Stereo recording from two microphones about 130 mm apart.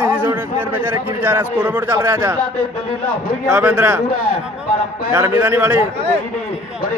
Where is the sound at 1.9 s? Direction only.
25° right (ahead or behind).